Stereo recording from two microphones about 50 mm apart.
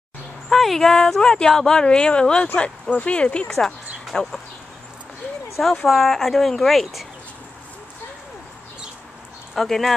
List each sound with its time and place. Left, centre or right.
0.5 s speech: centre; by 3.4 s left
3.4 s speech: centre
5.9 s speech: centre
9.6 s speech: centre